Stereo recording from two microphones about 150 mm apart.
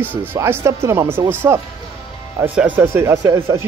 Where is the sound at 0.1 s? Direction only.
15° right (ahead or behind).